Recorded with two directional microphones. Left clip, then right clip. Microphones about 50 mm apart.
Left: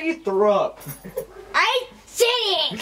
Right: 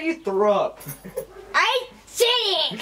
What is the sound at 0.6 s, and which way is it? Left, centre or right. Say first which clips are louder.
Speech: left 1 dB; centre.